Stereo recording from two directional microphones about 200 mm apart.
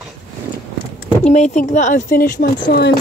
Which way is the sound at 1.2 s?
35° left (ahead or behind).